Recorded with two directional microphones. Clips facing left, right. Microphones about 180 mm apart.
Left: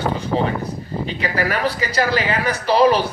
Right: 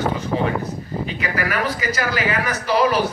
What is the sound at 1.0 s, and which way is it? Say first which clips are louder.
A man's voice: left 3 dB; 30° left (ahead or behind).